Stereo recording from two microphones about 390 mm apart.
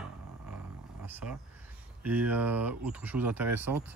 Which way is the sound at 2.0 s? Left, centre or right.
Centre.